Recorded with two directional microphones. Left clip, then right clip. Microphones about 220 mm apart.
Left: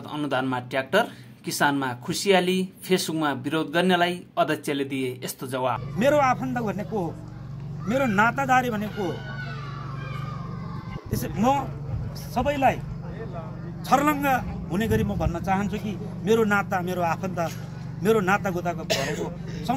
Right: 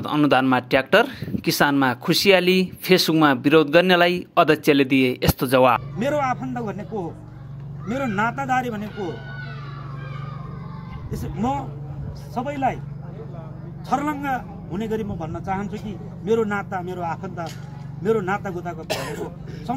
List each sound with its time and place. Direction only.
0.0 s speech: 30° right (ahead or behind)
5.9 s a man's voice: 5° left (ahead or behind)
11.1 s a man's voice: 5° left (ahead or behind)
13.8 s a man's voice: 5° left (ahead or behind)
18.9 s speech: 35° right (ahead or behind)